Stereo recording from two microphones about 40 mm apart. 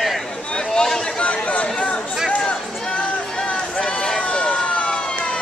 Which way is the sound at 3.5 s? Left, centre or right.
Left.